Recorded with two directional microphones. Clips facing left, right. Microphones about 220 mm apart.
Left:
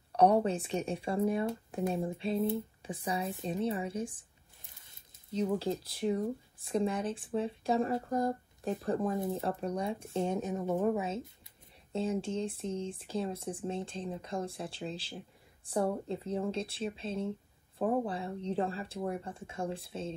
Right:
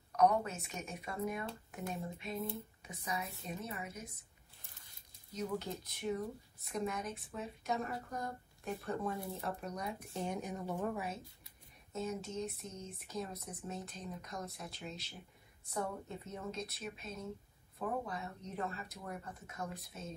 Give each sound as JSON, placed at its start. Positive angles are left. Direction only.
{"t": 0.1, "sound": "speech", "side_deg": 30}